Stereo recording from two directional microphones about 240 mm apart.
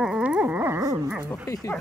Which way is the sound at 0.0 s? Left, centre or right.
Centre.